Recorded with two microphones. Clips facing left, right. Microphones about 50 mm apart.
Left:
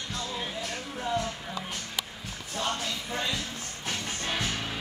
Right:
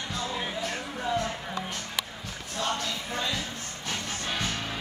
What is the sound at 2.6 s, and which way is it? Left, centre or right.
Music, centre.